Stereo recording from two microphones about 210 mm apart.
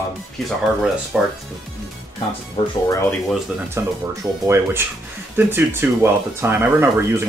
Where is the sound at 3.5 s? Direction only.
5° right (ahead or behind).